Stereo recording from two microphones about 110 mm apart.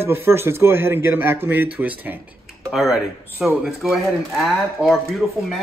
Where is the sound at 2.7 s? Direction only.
5° right (ahead or behind).